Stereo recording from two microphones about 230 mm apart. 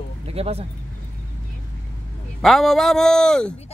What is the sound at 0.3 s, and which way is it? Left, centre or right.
Speech, right.